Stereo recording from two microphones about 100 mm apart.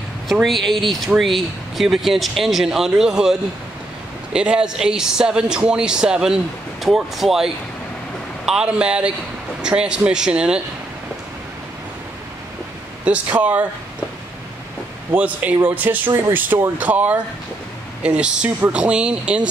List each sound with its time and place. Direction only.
0.3 s speech: centre (ahead or behind)
13.0 s speech: 15° right (ahead or behind)
15.1 s speech: 15° right (ahead or behind)